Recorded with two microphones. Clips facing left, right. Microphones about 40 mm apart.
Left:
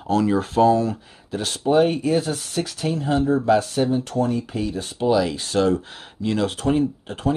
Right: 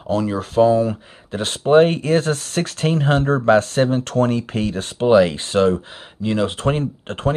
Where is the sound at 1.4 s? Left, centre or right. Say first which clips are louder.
Right 5 dB; right.